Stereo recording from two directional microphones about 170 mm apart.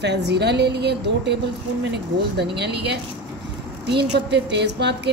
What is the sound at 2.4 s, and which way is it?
Speech, 75° right (ahead or behind).